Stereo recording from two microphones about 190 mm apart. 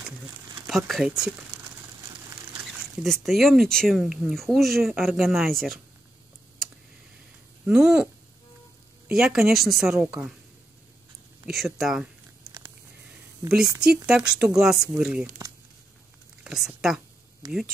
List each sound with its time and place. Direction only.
0.7 s speech: centre (ahead or behind)
3.0 s speech: centre (ahead or behind)
7.6 s speech: 5° right (ahead or behind)
11.4 s speech: centre (ahead or behind)
14.0 s speech: 5° right (ahead or behind)
15.2 s speech: 20° right (ahead or behind)
16.4 s speech: centre (ahead or behind)
17.4 s speech: 20° right (ahead or behind)